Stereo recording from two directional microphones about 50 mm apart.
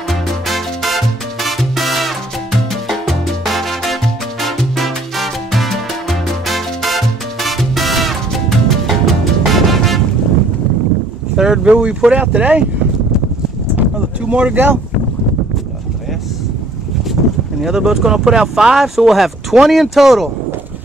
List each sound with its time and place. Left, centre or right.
0.1 s music: centre
11.3 s boat: centre
11.7 s speech: right
14.2 s speech: right
17.1 s speech: centre